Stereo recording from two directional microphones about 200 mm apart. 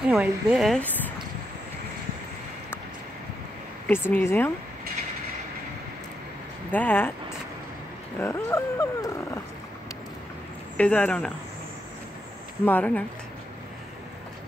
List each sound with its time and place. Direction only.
0.0 s a woman's voice: 5° right (ahead or behind)
3.8 s speech: 10° left (ahead or behind)
6.7 s speech: 10° left (ahead or behind)
10.8 s a woman's voice: 5° left (ahead or behind)
12.6 s speech: 10° left (ahead or behind)